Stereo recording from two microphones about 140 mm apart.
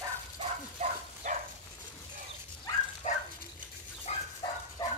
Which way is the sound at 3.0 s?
60° left (ahead or behind).